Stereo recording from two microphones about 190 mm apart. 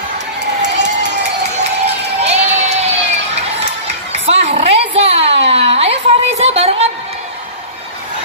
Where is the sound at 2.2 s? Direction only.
35° right (ahead or behind).